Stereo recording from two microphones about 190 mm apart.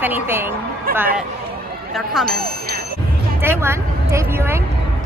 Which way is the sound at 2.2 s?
55° right (ahead or behind).